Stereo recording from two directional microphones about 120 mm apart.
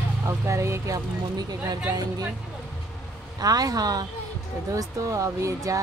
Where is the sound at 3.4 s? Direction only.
30° right (ahead or behind).